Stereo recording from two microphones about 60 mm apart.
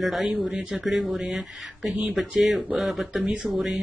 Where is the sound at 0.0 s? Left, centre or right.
Centre.